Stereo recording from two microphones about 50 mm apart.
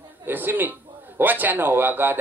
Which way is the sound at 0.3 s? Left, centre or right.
Right.